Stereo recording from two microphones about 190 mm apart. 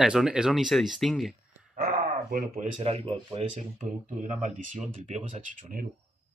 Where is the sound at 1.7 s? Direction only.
50° right (ahead or behind).